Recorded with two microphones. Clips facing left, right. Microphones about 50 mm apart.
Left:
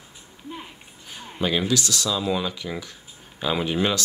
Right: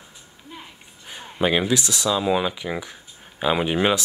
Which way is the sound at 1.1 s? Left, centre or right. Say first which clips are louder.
Right 4 dB; right.